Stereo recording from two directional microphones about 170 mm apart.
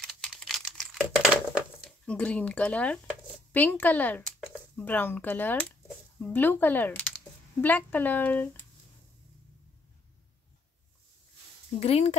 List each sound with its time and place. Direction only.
0.0 s crumpling: centre (ahead or behind)
2.0 s speech: 5° left (ahead or behind)
4.4 s a sound: centre (ahead or behind)
4.8 s speech: 10° left (ahead or behind)
11.8 s speech: 40° left (ahead or behind)